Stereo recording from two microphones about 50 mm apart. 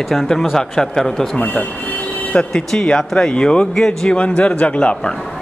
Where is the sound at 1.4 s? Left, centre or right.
Left.